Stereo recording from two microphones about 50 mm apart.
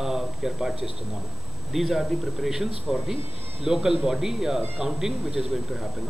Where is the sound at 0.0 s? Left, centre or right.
Centre.